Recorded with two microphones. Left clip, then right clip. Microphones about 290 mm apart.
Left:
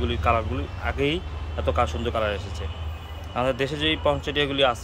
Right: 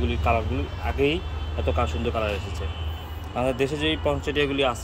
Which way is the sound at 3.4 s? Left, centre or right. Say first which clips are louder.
Even; centre.